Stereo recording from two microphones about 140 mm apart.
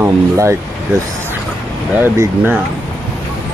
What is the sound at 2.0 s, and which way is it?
Speech, 15° right (ahead or behind).